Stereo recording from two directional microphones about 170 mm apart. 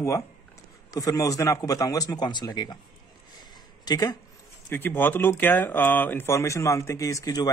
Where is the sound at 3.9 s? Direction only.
25° left (ahead or behind).